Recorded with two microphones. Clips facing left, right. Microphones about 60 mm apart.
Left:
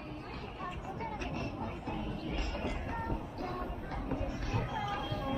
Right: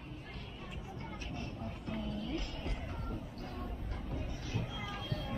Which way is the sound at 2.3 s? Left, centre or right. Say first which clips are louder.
Left 3 dB; left.